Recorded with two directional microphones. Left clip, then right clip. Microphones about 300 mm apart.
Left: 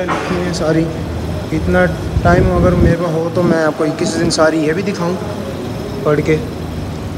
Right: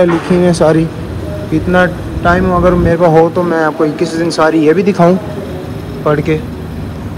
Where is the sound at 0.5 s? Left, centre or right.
Centre.